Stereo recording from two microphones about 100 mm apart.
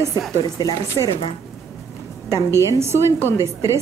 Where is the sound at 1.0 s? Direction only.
50° right (ahead or behind).